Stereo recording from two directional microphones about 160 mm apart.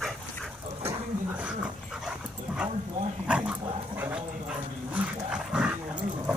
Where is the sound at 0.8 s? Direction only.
10° right (ahead or behind).